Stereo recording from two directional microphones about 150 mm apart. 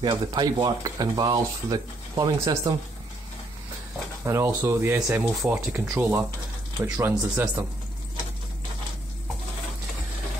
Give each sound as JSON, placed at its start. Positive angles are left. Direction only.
{"t": 0.0, "sound": "speech", "side_deg": -25}
{"t": 4.2, "sound": "speech", "side_deg": -20}